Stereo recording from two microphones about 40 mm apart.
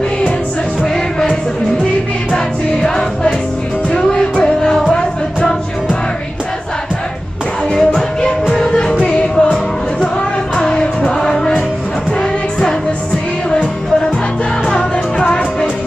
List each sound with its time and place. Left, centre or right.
2.3 s music: centre
7.7 s music: centre
9.0 s music: left
13.5 s music: centre